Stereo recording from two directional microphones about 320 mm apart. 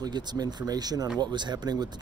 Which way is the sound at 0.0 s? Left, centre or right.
Centre.